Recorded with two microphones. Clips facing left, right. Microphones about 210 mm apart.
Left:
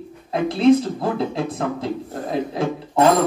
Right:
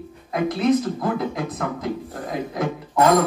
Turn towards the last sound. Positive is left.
turn(degrees=30)  # may be behind; listen again after turning